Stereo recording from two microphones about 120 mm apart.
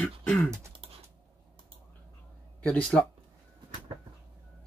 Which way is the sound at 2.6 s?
5° left (ahead or behind).